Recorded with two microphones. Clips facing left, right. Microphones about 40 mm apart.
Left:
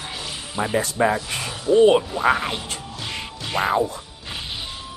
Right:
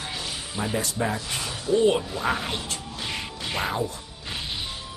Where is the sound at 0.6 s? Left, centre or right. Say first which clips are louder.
Left 7 dB; left.